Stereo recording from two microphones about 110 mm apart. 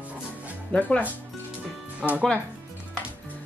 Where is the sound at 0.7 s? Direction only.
15° left (ahead or behind).